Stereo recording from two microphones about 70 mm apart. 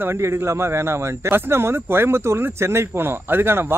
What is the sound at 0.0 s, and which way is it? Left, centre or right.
Speech, right.